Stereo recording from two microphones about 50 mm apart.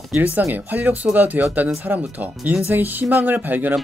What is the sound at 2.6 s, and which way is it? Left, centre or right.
Speech, right.